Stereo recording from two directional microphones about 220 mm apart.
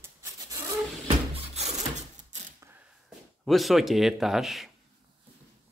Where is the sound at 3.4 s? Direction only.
Centre (ahead or behind).